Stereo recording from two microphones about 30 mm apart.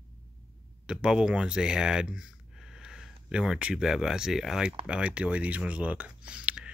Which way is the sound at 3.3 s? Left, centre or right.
Right.